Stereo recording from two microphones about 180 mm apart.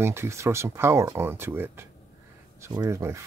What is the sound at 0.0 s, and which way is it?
Speech, 15° right (ahead or behind).